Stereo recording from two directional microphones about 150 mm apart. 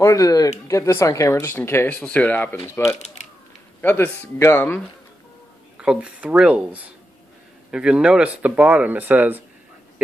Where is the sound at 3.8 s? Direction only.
15° left (ahead or behind).